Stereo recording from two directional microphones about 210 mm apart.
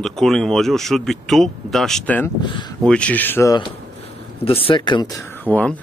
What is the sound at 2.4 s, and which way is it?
Speech, 20° left (ahead or behind).